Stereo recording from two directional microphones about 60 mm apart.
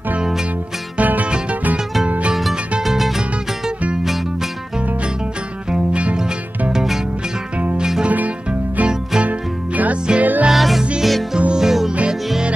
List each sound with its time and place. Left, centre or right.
0.2 s music: centre
0.9 s music: right
2.8 s music: centre
5.7 s music: centre
7.5 s music: centre
8.1 s music: right
10.5 s music: centre
10.8 s music: centre
11.9 s music: right